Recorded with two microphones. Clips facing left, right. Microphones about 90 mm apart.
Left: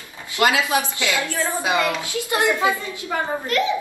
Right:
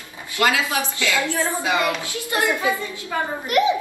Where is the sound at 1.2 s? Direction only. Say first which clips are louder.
Right 1 dB; 20° right (ahead or behind).